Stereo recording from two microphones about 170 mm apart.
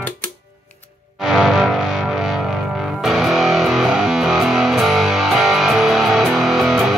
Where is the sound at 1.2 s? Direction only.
Centre (ahead or behind).